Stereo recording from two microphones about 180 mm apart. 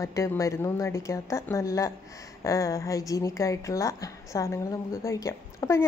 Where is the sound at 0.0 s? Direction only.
15° left (ahead or behind).